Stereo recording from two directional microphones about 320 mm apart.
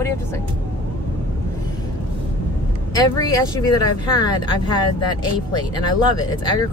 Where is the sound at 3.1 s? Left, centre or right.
Centre.